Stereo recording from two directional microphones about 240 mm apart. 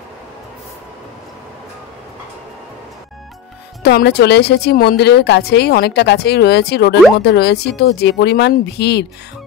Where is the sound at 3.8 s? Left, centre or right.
Left.